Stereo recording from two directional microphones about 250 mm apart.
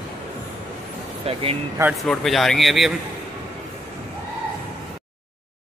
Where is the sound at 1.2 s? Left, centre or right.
Right.